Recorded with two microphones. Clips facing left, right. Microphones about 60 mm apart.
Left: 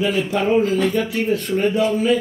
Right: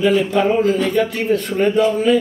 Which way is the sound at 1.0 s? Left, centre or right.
Right.